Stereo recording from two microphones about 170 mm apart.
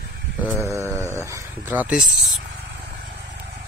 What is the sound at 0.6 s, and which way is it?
Mantra, 20° right (ahead or behind).